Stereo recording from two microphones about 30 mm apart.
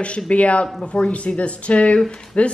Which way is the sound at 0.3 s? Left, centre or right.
Left.